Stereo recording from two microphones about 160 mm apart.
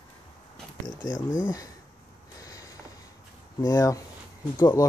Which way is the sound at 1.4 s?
20° left (ahead or behind).